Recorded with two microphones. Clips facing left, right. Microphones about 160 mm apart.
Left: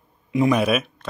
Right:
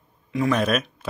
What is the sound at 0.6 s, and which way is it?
Speech, 5° left (ahead or behind).